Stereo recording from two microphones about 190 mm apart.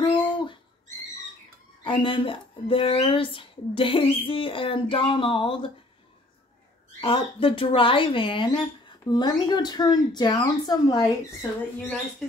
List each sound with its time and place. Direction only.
0.0 s bird: 25° left (ahead or behind)
1.9 s speech: 25° left (ahead or behind)
7.0 s speech: 25° left (ahead or behind)
11.8 s speech: 5° left (ahead or behind)